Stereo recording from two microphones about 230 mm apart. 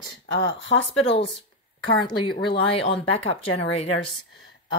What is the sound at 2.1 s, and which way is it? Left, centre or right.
Speech, left.